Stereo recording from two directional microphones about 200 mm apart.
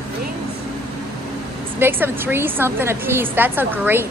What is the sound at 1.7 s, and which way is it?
A woman's voice, 10° right (ahead or behind).